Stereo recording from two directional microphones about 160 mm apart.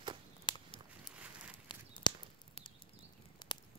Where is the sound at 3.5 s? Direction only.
30° left (ahead or behind).